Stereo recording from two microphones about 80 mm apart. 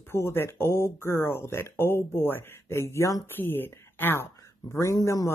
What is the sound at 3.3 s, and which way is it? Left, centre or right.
Speech, left.